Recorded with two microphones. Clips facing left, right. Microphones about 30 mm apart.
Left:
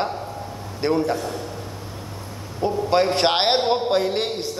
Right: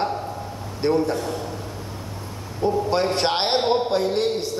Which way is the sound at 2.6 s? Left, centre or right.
Left.